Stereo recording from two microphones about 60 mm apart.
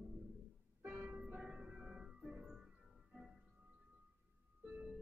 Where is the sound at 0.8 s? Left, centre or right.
Right; by 2.6 s centre.